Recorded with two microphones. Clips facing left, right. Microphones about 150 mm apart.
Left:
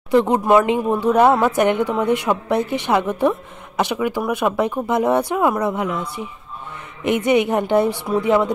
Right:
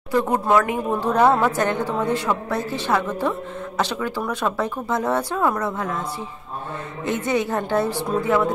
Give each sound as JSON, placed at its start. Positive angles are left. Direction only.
{"t": 0.1, "sound": "a woman's voice", "side_deg": 20}